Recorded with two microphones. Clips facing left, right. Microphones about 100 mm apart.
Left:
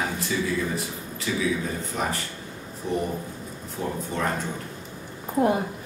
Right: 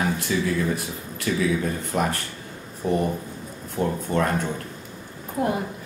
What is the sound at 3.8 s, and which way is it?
Speech, 65° right (ahead or behind).